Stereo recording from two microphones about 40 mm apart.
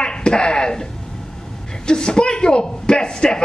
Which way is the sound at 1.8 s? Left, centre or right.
Left.